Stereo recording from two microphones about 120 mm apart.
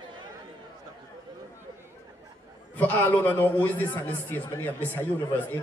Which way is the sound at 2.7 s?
15° left (ahead or behind).